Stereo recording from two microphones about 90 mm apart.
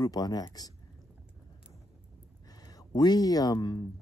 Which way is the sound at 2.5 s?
45° left (ahead or behind).